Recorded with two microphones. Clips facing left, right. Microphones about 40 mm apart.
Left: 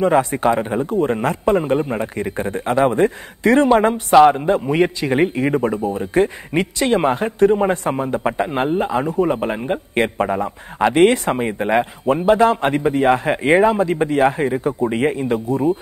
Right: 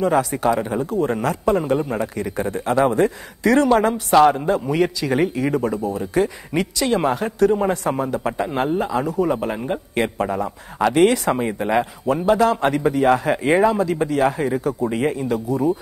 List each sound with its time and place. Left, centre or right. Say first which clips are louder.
0.0 s a man's voice: left 3 dB; left